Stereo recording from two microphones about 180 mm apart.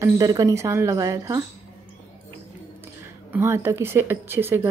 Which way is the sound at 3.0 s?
10° right (ahead or behind).